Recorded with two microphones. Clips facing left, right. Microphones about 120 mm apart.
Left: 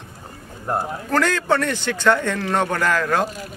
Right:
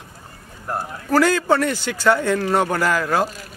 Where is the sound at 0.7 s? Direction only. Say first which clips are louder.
Left 3 dB; 20° left (ahead or behind).